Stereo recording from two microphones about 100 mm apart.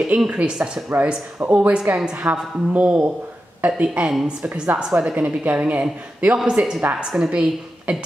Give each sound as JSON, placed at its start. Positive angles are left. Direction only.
{"t": 0.1, "sound": "a woman's voice", "side_deg": -10}